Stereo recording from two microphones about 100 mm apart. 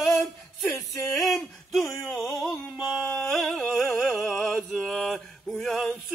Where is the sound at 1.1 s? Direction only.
Centre (ahead or behind).